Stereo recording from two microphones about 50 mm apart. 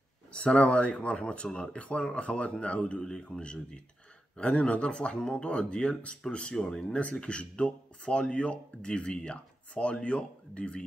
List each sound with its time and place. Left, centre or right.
0.3 s speech: left